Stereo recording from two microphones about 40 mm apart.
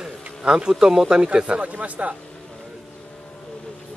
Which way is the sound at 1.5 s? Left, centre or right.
Right.